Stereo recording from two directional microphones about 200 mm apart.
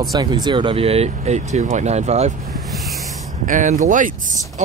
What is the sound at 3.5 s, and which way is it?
Speech, 40° right (ahead or behind).